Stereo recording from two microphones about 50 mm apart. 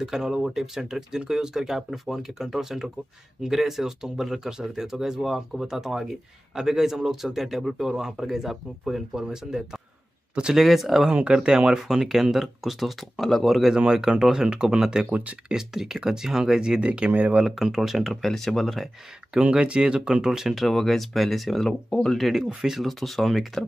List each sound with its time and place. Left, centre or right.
0.0 s speech: centre
11.2 s speech: centre
13.7 s speech: centre
15.0 s speech: right
15.7 s speech: centre
17.1 s speech: right
17.5 s speech: centre
18.2 s speech: centre
19.5 s speech: right
20.5 s speech: centre
22.5 s speech: centre
22.8 s speech: centre